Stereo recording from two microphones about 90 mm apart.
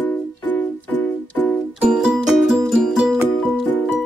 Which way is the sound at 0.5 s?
15° left (ahead or behind).